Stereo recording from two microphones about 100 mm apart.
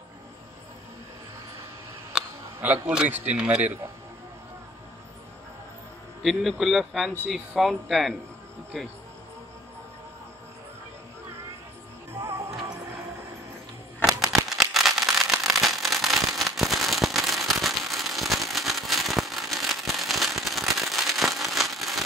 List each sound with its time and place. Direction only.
2.1 s a sound: 10° right (ahead or behind)
3.3 s speech: 10° right (ahead or behind)
6.2 s speech: centre (ahead or behind)
12.2 s music: 35° right (ahead or behind)
14.3 s fireworks: centre (ahead or behind)